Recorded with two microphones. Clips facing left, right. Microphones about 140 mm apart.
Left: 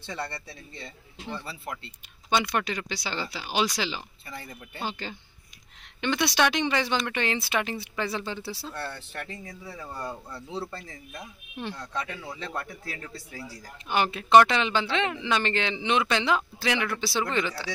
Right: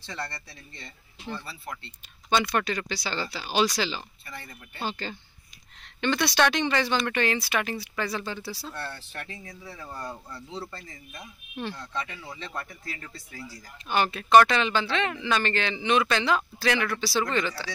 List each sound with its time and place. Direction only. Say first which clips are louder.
0.0 s speech: left 2 dB; 10° left (ahead or behind); by 8.6 s 25° left (ahead or behind)
9.1 s speech: left 2 dB; 5° left (ahead or behind)
13.8 s speech: even; 15° left (ahead or behind)